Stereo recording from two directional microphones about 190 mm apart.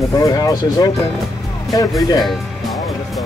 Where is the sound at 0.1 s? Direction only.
20° left (ahead or behind).